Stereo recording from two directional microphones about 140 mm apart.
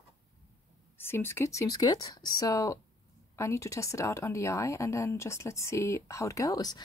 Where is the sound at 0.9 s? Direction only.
15° left (ahead or behind).